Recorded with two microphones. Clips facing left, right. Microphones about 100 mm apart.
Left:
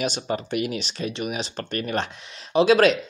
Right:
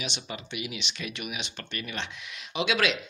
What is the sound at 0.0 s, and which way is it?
Speech, 45° left (ahead or behind).